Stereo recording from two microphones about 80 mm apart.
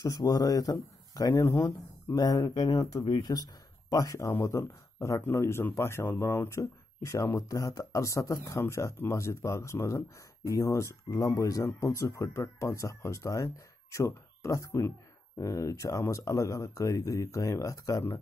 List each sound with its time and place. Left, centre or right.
0.0 s speech: left
6.6 s speech: left